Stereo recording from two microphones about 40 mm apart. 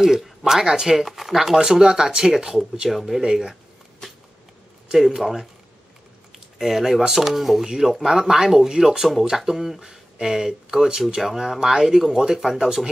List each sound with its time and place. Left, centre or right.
0.0 s speech: centre
2.9 s speech: centre
4.9 s speech: centre
6.6 s speech: centre